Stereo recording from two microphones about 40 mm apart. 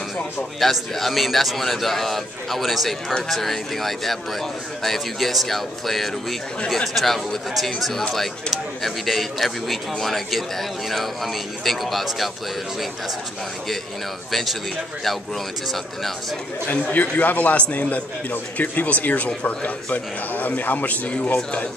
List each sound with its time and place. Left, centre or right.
0.6 s a man's voice: centre
14.3 s a man's voice: centre
16.6 s speech: left